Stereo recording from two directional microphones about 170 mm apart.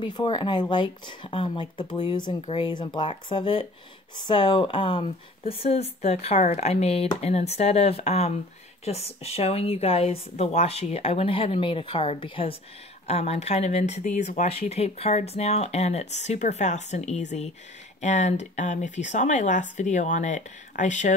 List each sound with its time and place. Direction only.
0.0 s speech: 30° left (ahead or behind); by 21.1 s 45° left (ahead or behind)